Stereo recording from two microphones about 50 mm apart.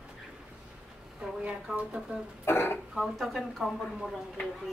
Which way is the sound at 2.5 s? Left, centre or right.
Left.